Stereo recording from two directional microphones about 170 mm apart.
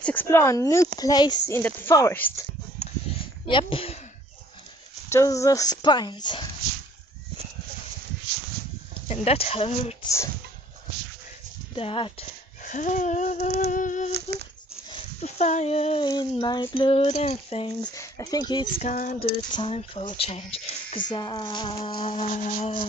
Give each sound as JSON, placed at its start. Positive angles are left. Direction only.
{"t": 0.0, "sound": "speech", "side_deg": 10}
{"t": 2.8, "sound": "a sound", "side_deg": 35}
{"t": 3.4, "sound": "speech", "side_deg": 30}
{"t": 5.1, "sound": "speech", "side_deg": 20}
{"t": 9.0, "sound": "speech", "side_deg": 40}
{"t": 11.7, "sound": "speech", "side_deg": 30}
{"t": 12.6, "sound": "a sound", "side_deg": 45}
{"t": 14.9, "sound": "speech", "side_deg": 40}
{"t": 16.1, "sound": "speech", "side_deg": 25}
{"t": 17.9, "sound": "speech", "side_deg": 20}
{"t": 18.8, "sound": "a sound", "side_deg": 45}
{"t": 19.1, "sound": "speech", "side_deg": 30}
{"t": 21.1, "sound": "speech", "side_deg": 25}
{"t": 22.3, "sound": "speech", "side_deg": 45}